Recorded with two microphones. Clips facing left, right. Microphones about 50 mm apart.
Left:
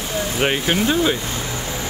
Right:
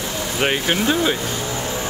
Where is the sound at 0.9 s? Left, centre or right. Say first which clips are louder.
Even; centre.